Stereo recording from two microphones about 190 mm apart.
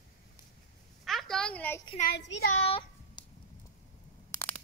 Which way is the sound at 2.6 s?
30° left (ahead or behind).